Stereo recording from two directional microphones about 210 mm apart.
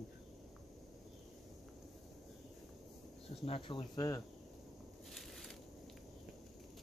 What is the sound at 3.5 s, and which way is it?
Speech, 25° left (ahead or behind).